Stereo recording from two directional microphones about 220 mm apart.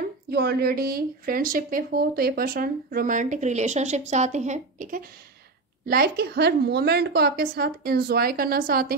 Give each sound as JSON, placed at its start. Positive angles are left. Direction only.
{"t": 0.0, "sound": "speech", "side_deg": -45}
{"t": 5.9, "sound": "a woman's voice", "side_deg": -45}